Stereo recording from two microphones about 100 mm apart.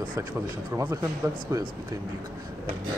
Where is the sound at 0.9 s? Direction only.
35° right (ahead or behind).